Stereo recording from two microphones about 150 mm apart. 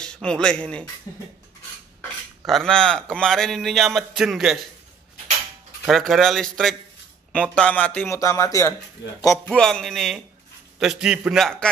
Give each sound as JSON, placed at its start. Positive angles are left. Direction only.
{"t": 0.0, "sound": "speech", "side_deg": 5}
{"t": 1.1, "sound": "beatboxing", "side_deg": 20}
{"t": 2.4, "sound": "a man's voice", "side_deg": 0}
{"t": 5.9, "sound": "a man's voice", "side_deg": 0}
{"t": 9.5, "sound": "a man's voice", "side_deg": 5}